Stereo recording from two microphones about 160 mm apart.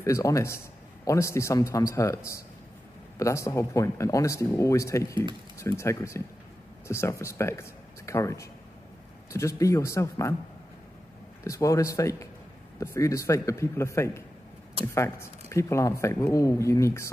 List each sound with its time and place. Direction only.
0.0 s a man's voice: 20° left (ahead or behind)
11.4 s a man's voice: 20° left (ahead or behind)